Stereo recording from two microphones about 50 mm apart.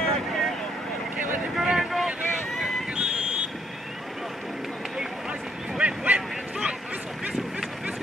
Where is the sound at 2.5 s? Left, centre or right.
Centre.